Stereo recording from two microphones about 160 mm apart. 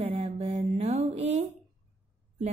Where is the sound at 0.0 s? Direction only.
40° right (ahead or behind).